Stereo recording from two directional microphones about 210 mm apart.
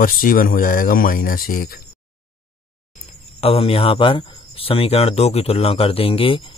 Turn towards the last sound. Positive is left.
turn(degrees=25)  # may be behind; listen again after turning